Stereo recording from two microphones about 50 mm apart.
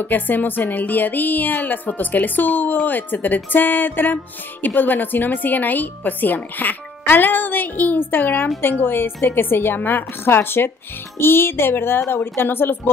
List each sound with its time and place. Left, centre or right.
0.0 s a woman's voice: left